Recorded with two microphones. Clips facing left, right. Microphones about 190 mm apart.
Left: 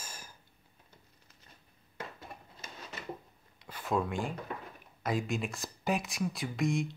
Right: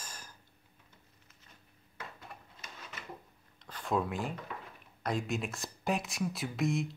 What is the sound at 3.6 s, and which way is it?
Speech, 5° left (ahead or behind).